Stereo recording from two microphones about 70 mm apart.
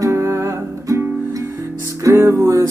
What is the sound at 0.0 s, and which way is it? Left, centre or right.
Music, right.